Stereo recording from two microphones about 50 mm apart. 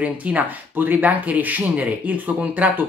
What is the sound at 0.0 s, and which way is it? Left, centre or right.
Speech, right.